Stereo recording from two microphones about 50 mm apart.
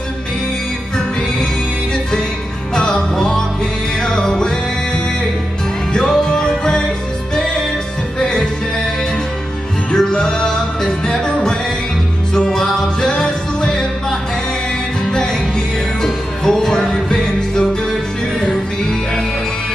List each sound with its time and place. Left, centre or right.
2.7 s music: centre
8.2 s music: centre
9.9 s music: centre
16.0 s music: centre